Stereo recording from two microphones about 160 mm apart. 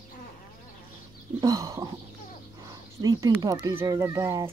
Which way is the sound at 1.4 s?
20° right (ahead or behind).